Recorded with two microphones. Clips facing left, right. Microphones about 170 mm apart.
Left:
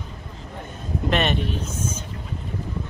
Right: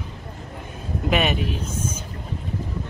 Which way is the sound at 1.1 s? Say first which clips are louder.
Right 1 dB; 5° right (ahead or behind).